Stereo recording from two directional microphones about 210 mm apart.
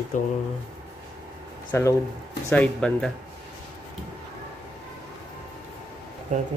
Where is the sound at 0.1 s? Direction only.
35° left (ahead or behind).